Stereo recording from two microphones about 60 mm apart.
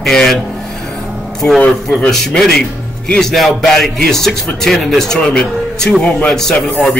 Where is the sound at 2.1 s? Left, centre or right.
Centre.